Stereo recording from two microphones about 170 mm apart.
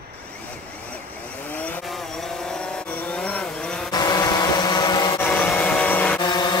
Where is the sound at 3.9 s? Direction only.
25° left (ahead or behind).